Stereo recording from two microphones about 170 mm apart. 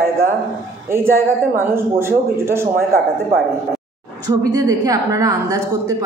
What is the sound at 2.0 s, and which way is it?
A man's voice, 15° right (ahead or behind).